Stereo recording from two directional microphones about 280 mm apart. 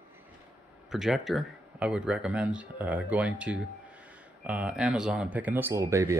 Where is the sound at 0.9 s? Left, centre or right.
Centre.